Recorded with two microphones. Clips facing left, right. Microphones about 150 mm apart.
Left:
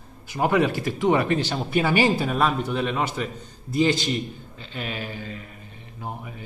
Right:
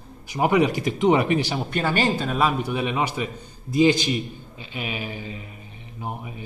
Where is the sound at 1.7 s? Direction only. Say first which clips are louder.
Left 3 dB; 10° left (ahead or behind).